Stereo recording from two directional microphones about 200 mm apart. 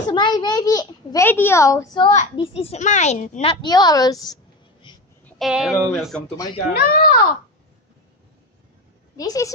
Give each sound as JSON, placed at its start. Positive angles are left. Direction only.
{"t": 0.1, "sound": "a child's voice", "side_deg": 20}
{"t": 3.6, "sound": "a woman's voice", "side_deg": 20}
{"t": 5.4, "sound": "speech", "side_deg": 0}
{"t": 6.8, "sound": "a child's voice", "side_deg": 50}
{"t": 9.1, "sound": "a woman's voice", "side_deg": 15}